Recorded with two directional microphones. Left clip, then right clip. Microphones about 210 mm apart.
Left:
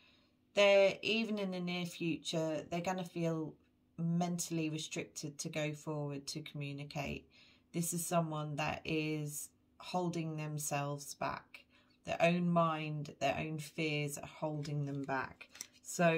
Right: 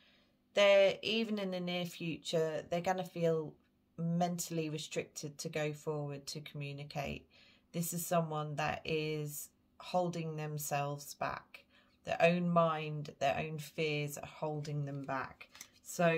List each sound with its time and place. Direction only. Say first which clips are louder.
0.6 s speech: right 1 dB; 35° right (ahead or behind)